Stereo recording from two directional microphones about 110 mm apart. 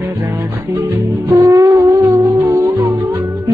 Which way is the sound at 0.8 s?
15° right (ahead or behind).